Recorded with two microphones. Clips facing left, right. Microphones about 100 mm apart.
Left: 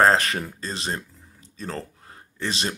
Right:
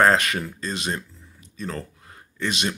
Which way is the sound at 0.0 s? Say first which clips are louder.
Even; 30° left (ahead or behind).